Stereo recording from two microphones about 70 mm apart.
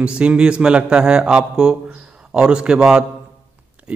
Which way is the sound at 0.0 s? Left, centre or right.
Centre.